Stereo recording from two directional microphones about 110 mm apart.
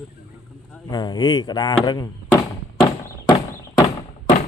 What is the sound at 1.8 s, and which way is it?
Speech, 45° left (ahead or behind).